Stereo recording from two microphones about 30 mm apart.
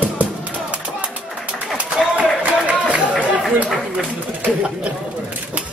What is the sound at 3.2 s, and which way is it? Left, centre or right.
Chatter, right.